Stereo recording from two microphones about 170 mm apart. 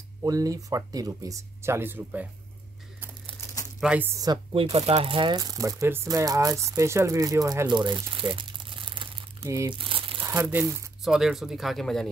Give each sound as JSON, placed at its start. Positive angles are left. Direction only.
{"t": 0.2, "sound": "speech", "side_deg": -20}
{"t": 3.8, "sound": "speech", "side_deg": -5}
{"t": 4.1, "sound": "speech", "side_deg": -25}
{"t": 9.7, "sound": "crumpling", "side_deg": -30}
{"t": 10.2, "sound": "speech", "side_deg": -15}
{"t": 11.1, "sound": "speech", "side_deg": -5}